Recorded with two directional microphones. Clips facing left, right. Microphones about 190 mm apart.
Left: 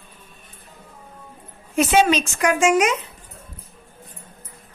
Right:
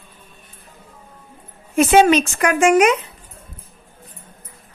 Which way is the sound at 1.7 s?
55° right (ahead or behind).